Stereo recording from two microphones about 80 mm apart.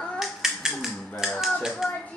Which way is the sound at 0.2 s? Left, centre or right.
Centre.